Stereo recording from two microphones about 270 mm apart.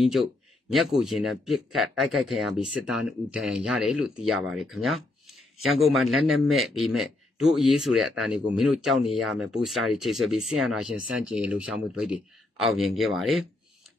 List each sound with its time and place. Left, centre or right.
0.0 s speech: centre